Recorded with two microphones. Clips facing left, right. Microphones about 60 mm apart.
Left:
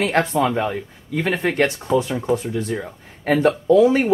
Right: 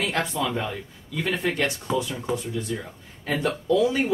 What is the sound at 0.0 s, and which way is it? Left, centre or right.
Speech, left.